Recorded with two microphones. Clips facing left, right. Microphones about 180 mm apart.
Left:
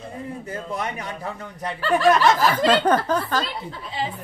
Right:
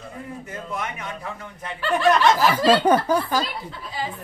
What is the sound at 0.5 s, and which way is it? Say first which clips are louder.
A man's voice: left 2 dB; 35° left (ahead or behind).